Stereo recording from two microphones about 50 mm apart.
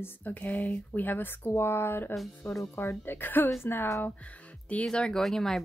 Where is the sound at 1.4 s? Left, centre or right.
Left.